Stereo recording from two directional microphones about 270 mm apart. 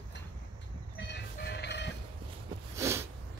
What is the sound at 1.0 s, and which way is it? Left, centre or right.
Music, left.